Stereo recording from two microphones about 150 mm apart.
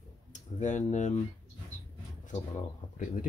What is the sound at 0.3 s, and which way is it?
Speech, 55° left (ahead or behind).